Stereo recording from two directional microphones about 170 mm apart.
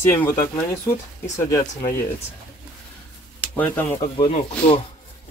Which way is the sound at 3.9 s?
30° left (ahead or behind).